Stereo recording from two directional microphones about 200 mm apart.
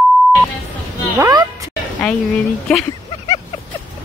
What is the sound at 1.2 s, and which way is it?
Speech, 20° right (ahead or behind).